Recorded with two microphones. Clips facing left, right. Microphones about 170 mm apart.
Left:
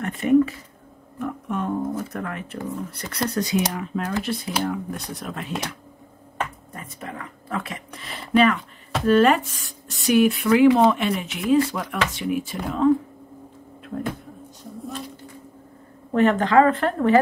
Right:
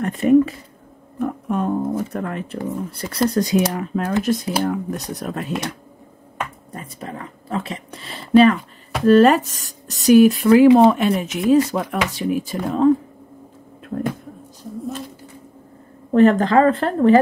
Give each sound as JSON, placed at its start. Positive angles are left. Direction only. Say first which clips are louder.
{"t": 0.0, "sound": "speech", "louder": "right 3 dB", "side_deg": -35}
{"t": 3.5, "sound": "speech", "louder": "right 5 dB", "side_deg": -50}
{"t": 4.5, "sound": "speech", "louder": "right 4 dB", "side_deg": -35}
{"t": 6.7, "sound": "a sound", "louder": "right 3 dB", "side_deg": -30}
{"t": 9.0, "sound": "speech", "louder": "right 5 dB", "side_deg": -35}
{"t": 16.1, "sound": "speech", "louder": "right 5 dB", "side_deg": -35}